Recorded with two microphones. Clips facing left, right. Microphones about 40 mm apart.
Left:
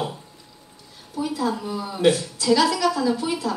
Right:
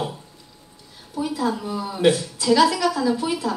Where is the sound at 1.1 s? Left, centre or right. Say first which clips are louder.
Right 1 dB; centre.